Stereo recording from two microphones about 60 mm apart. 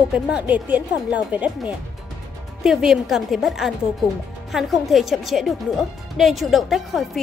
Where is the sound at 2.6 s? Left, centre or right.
Centre.